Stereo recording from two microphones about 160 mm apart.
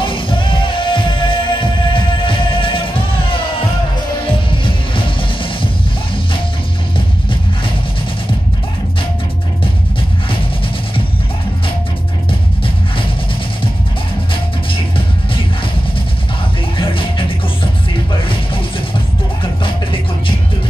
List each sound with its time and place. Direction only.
0.0 s music: 30° left (ahead or behind)
14.3 s music: 35° left (ahead or behind)
16.7 s music: 35° left (ahead or behind)
19.6 s music: 35° left (ahead or behind)